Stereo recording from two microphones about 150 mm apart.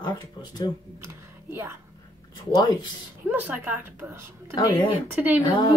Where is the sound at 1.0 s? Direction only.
15° right (ahead or behind).